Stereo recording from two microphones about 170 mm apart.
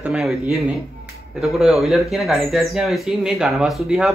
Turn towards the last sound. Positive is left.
turn(degrees=-5)  # may be behind; listen again after turning